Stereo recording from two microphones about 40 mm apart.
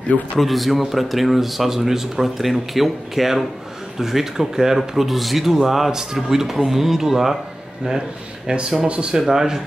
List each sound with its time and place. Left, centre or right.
0.4 s speech: centre
8.5 s speech: centre
9.3 s speech: centre